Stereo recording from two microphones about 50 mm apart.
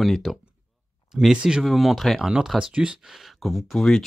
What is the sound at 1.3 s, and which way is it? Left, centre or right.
Speech, centre.